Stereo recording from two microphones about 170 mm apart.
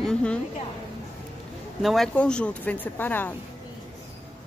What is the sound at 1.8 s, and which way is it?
A woman's voice, centre (ahead or behind).